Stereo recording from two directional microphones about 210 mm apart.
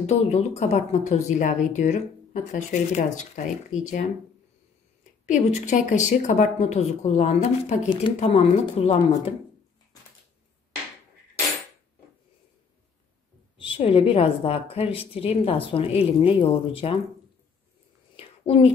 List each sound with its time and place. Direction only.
0.0 s speech: 30° left (ahead or behind)
5.2 s speech: 35° left (ahead or behind)
13.6 s a woman's voice: 25° left (ahead or behind)
18.1 s a sound: 25° left (ahead or behind)